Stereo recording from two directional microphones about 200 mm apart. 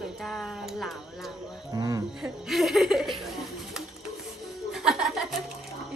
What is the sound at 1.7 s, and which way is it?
Speech, 20° right (ahead or behind).